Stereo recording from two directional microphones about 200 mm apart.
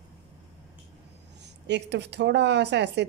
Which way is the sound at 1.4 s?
60° right (ahead or behind).